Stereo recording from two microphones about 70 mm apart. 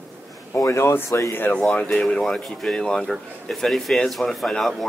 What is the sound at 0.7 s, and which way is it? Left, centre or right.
Speech, left.